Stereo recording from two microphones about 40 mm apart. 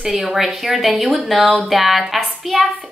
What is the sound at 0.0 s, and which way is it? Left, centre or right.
A woman's voice, centre.